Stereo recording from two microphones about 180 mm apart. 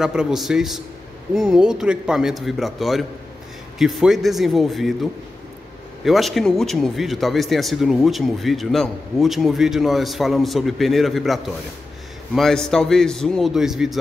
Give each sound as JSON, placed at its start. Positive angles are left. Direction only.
{"t": 0.0, "sound": "speech", "side_deg": -5}
{"t": 6.0, "sound": "speech", "side_deg": 0}